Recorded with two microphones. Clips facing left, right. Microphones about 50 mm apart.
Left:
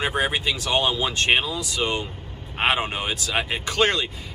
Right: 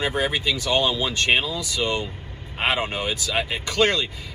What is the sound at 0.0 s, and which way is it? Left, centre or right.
A man's voice, left.